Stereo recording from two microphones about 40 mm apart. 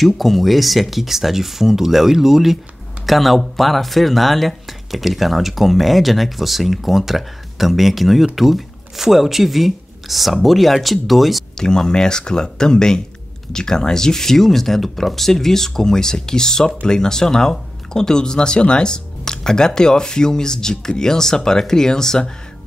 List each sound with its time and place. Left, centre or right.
0.0 s speech: centre
11.5 s speech: centre